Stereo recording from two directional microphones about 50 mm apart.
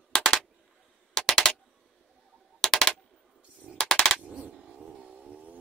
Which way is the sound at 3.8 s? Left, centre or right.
Centre.